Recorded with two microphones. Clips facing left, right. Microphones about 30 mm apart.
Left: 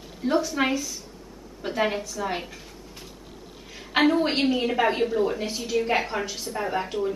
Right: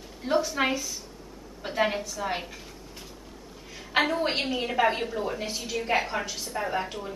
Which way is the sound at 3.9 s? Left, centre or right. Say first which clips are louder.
Left 4 dB; centre.